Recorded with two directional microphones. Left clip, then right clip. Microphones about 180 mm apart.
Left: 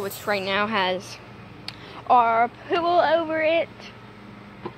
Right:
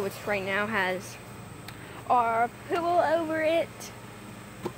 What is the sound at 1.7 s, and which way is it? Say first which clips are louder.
Speech: left 6 dB; 35° left (ahead or behind).